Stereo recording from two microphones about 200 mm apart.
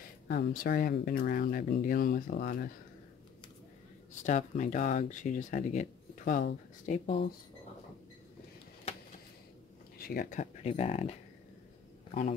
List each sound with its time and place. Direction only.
0.3 s speech: 50° left (ahead or behind)
4.2 s speech: 35° left (ahead or behind)
6.9 s speech: 30° left (ahead or behind)
9.9 s a man's voice: 45° left (ahead or behind)